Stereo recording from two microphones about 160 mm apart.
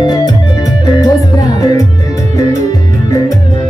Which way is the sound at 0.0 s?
25° left (ahead or behind).